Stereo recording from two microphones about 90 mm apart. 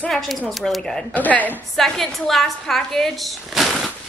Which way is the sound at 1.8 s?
Centre (ahead or behind).